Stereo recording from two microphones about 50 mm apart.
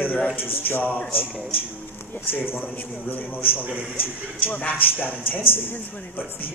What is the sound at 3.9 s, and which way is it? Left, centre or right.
Speech, left.